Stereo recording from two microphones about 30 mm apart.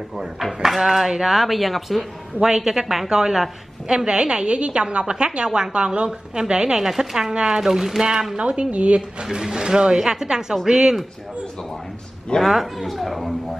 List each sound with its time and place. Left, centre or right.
0.6 s speech: centre
2.4 s speech: centre
3.9 s a woman's voice: right
6.8 s speech: centre
7.3 s a woman's voice: right
7.6 s speech: centre
8.0 s a woman's voice: right
8.4 s a woman's voice: right
9.2 s a woman's voice: right
12.4 s a woman's voice: centre